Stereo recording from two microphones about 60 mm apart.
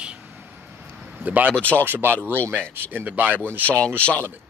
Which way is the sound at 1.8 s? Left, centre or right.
Right.